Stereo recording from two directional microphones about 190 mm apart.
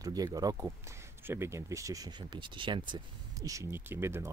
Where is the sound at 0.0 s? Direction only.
20° right (ahead or behind).